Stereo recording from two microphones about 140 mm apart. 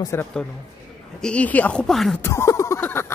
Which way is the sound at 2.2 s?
20° left (ahead or behind).